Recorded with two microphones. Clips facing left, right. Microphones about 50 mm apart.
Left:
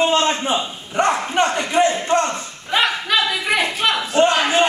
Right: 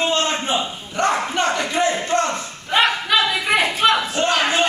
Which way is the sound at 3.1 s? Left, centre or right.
Centre.